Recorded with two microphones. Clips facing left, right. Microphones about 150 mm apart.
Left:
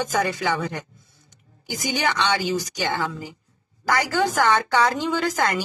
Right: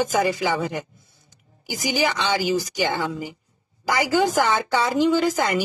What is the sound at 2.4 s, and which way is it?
Speech, 10° right (ahead or behind).